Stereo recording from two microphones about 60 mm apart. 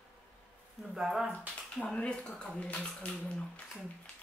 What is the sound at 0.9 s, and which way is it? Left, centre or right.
Speech, centre.